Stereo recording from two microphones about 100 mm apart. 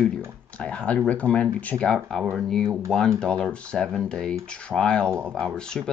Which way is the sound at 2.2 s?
5° right (ahead or behind).